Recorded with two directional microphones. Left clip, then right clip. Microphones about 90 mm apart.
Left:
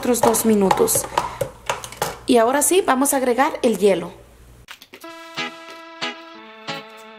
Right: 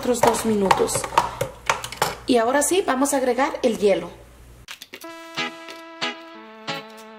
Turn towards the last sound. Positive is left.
turn(degrees=0)  # may be behind; listen again after turning